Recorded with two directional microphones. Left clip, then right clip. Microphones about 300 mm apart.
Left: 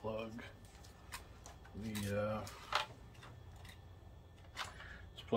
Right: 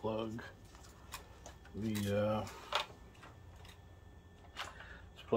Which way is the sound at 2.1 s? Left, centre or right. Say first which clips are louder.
Right 4 dB; right.